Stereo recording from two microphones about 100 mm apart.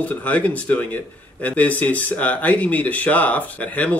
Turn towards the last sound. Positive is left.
turn(degrees=15)  # may be behind; listen again after turning